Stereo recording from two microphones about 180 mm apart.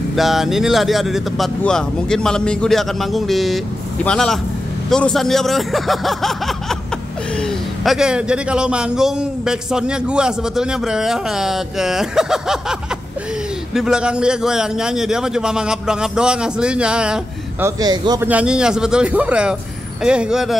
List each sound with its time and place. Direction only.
0.1 s a man's voice: centre (ahead or behind)
13.7 s a man's voice: 5° right (ahead or behind)
17.6 s a man's voice: 20° right (ahead or behind)
18.2 s a man's voice: 5° right (ahead or behind)